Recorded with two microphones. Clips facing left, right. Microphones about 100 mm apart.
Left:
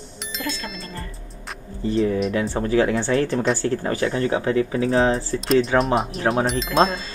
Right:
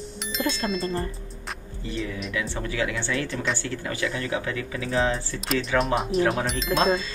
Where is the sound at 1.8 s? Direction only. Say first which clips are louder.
Left 11 dB; 40° left (ahead or behind).